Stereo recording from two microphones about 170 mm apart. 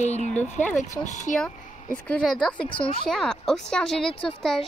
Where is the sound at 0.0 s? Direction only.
45° left (ahead or behind).